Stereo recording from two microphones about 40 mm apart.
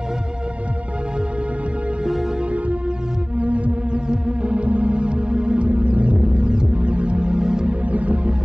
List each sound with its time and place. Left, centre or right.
3.3 s music: right
6.2 s music: right
7.8 s music: right